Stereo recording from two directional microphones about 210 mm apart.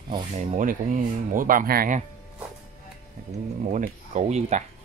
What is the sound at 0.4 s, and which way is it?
Speech, 35° right (ahead or behind).